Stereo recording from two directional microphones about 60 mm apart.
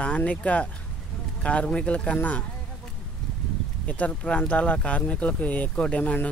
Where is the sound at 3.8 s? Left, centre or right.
Left.